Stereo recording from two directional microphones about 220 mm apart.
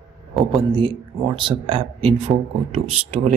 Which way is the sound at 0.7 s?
20° right (ahead or behind).